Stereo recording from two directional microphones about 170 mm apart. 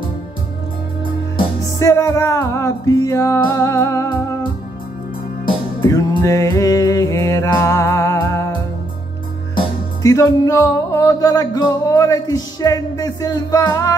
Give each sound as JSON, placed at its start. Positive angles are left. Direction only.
{"t": 1.8, "sound": "music", "side_deg": 20}
{"t": 5.8, "sound": "music", "side_deg": 20}
{"t": 10.0, "sound": "music", "side_deg": 20}